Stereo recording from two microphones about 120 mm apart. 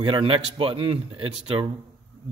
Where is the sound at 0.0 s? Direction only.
45° right (ahead or behind).